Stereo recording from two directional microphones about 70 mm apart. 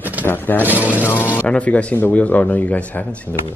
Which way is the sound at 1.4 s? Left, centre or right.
Centre.